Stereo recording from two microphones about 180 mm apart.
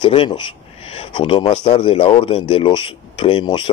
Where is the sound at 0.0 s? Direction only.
30° left (ahead or behind).